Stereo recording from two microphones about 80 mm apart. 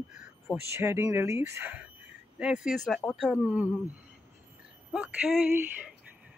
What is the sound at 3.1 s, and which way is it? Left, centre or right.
Speech, centre.